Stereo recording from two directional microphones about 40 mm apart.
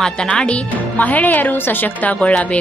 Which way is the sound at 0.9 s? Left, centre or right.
Left.